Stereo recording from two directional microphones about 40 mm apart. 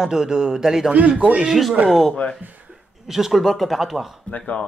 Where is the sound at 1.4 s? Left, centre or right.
Centre.